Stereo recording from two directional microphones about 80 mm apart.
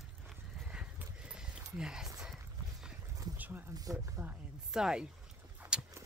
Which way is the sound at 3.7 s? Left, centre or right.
Right.